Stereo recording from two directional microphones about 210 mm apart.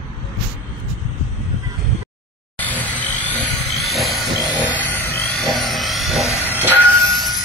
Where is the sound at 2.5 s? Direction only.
10° left (ahead or behind).